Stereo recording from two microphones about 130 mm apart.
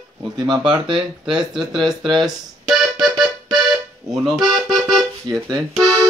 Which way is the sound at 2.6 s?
Centre (ahead or behind).